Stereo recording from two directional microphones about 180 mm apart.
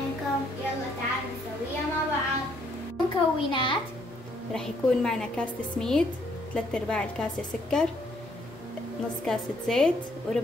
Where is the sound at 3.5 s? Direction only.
30° left (ahead or behind).